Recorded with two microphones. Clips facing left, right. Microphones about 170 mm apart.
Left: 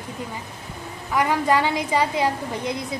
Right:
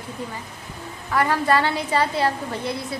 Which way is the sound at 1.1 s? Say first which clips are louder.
Even; 15° left (ahead or behind).